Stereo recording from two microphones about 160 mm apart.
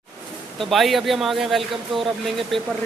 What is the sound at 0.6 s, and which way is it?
A man's voice, centre (ahead or behind).